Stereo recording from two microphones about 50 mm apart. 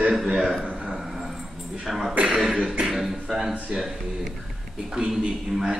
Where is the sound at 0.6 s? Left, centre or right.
Right.